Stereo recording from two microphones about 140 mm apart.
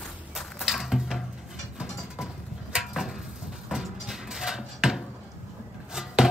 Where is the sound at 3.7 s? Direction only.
5° right (ahead or behind).